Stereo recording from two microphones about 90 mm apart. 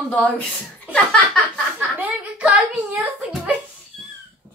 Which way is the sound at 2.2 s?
15° right (ahead or behind).